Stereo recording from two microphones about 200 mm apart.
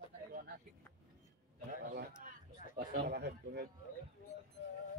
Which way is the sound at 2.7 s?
55° right (ahead or behind).